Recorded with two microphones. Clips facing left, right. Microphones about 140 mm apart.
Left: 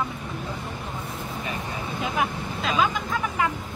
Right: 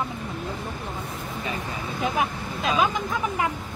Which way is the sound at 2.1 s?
20° right (ahead or behind).